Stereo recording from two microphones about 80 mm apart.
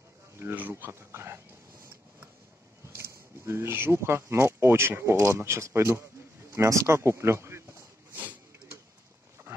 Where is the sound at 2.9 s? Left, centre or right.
Right.